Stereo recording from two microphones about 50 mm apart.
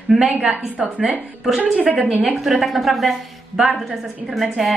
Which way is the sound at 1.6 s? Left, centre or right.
Right.